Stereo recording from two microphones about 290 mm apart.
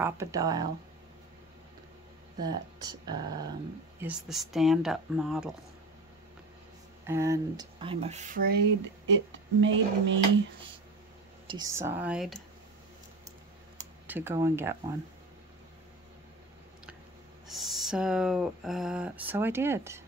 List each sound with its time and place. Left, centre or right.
0.0 s speech: centre
2.4 s speech: centre
4.0 s speech: centre
7.1 s speech: centre; by 10.2 s right
11.4 s speech: centre
14.0 s speech: centre
17.5 s speech: centre